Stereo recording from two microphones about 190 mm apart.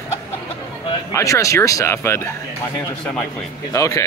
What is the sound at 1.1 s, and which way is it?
Speech, 15° left (ahead or behind).